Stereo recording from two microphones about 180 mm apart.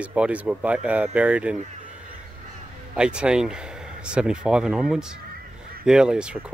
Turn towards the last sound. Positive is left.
turn(degrees=-5)  # may be behind; listen again after turning